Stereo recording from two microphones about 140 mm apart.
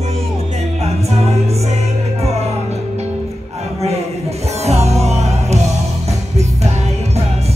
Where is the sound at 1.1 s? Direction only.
50° right (ahead or behind).